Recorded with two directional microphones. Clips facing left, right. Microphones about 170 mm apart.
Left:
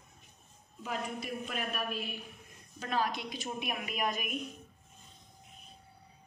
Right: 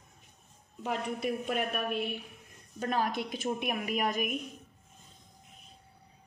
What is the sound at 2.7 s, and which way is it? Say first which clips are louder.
A woman's voice: right 3 dB; 50° right (ahead or behind).